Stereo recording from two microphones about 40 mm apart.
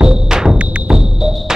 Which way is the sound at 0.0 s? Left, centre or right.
Centre.